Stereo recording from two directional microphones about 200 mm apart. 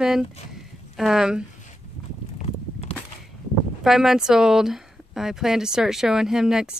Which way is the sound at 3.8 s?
Centre (ahead or behind).